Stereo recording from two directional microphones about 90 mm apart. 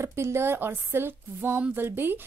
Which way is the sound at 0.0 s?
30° right (ahead or behind).